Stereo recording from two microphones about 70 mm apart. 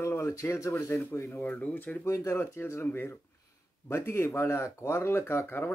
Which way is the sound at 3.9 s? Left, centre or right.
Left.